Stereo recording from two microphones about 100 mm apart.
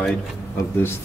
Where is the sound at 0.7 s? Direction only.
25° left (ahead or behind).